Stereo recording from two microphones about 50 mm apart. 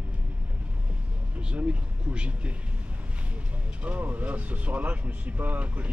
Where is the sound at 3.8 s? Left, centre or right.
Right.